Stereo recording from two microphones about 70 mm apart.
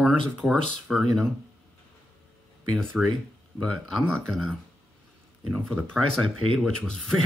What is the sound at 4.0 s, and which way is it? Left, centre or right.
Speech, centre.